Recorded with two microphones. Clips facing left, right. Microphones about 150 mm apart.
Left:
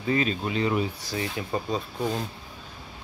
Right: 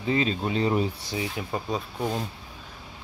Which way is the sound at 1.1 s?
10° right (ahead or behind).